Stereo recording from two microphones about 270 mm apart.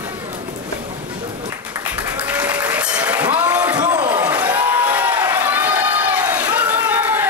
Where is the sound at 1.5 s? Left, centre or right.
Centre.